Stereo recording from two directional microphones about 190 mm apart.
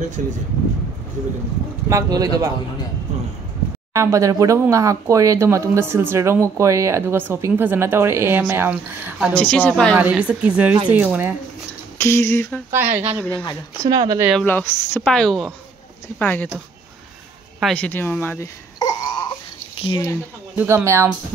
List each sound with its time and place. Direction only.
0.2 s speech: 40° right (ahead or behind)
1.9 s speech: 15° right (ahead or behind)
3.9 s speech: 15° right (ahead or behind)
9.3 s a woman's voice: 10° left (ahead or behind)
9.9 s speech: 10° right (ahead or behind)
12.0 s a woman's voice: 15° left (ahead or behind)
12.7 s speech: 10° right (ahead or behind)
13.2 s a woman's voice: 10° left (ahead or behind)
13.8 s speech: 20° right (ahead or behind)
14.4 s a woman's voice: 10° left (ahead or behind)
17.6 s a sound: 5° left (ahead or behind)
19.8 s speech: 20° left (ahead or behind)
20.5 s speech: 10° right (ahead or behind)